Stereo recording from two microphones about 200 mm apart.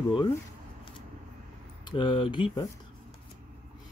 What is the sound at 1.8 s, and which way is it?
Speech, 25° left (ahead or behind).